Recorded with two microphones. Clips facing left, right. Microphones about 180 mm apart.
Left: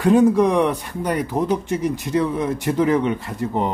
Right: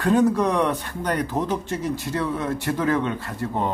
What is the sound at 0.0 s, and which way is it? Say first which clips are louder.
Speech: left 4 dB; 15° left (ahead or behind).